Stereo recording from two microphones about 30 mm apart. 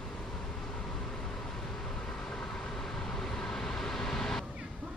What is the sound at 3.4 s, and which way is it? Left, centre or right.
Vehicle, left.